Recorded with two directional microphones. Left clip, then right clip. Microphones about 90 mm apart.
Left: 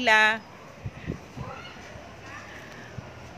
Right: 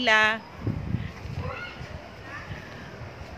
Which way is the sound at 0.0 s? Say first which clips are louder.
Left 1 dB; 30° left (ahead or behind).